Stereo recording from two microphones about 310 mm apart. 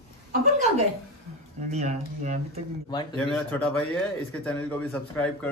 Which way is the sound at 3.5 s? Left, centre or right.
Centre.